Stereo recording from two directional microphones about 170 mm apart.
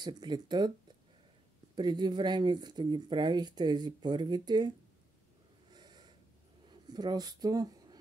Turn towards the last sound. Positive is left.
turn(degrees=-20)  # may be behind; listen again after turning